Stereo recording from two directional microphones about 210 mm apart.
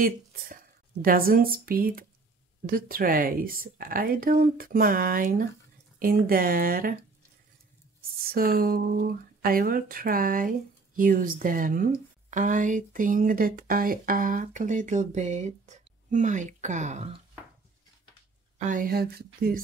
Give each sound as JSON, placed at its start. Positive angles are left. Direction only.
{"t": 0.0, "sound": "speech", "side_deg": -40}
{"t": 8.3, "sound": "speech", "side_deg": -45}
{"t": 18.6, "sound": "speech", "side_deg": -40}